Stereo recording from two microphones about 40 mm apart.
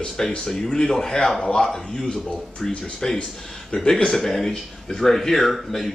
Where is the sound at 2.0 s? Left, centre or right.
Left; by 5.8 s centre.